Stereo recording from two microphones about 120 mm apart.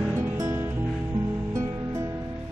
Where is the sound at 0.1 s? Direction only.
25° right (ahead or behind).